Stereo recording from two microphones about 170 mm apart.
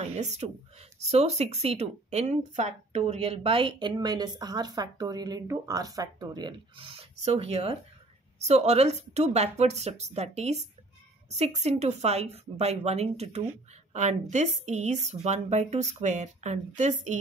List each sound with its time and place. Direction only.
0.0 s speech: 40° right (ahead or behind)